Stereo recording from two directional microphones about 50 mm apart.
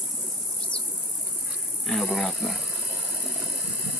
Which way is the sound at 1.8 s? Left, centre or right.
Centre.